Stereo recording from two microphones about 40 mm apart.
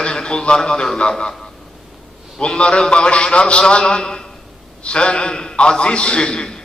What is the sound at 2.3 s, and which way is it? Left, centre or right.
A man's voice, left.